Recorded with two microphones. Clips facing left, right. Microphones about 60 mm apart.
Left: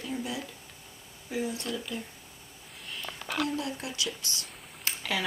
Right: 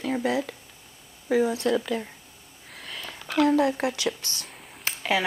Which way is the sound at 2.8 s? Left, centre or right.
Right.